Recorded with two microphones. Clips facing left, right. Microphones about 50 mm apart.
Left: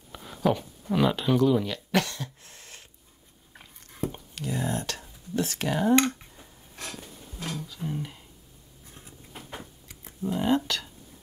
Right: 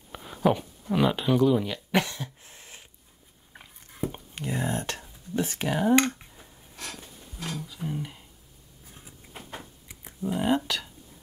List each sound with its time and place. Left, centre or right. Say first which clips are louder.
0.1 s speech: right 1 dB; centre
3.5 s biting: right 1 dB; centre
4.4 s speech: even; right
5.7 s computer keyboard: even; centre
6.7 s a sound: left 1 dB; left
7.6 s speech: even; centre
8.8 s a sound: left 1 dB; centre